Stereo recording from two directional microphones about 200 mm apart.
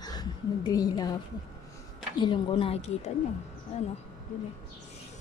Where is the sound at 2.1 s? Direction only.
25° left (ahead or behind).